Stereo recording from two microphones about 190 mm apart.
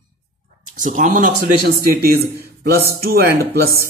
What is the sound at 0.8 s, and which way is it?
Speech, 40° right (ahead or behind).